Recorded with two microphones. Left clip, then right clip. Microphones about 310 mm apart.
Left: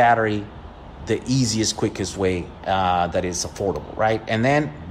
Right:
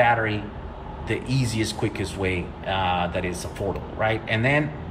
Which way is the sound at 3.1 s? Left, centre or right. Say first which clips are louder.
Left 4 dB; left.